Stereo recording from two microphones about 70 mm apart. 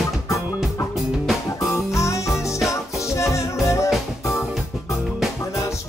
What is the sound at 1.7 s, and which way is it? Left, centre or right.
Music, left.